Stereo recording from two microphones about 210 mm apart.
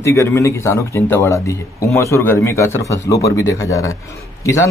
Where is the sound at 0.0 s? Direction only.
15° left (ahead or behind).